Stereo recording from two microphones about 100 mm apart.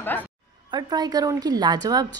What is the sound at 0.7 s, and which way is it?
A woman's voice, 40° right (ahead or behind).